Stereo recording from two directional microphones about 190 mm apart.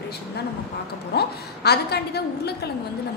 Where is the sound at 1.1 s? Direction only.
60° left (ahead or behind).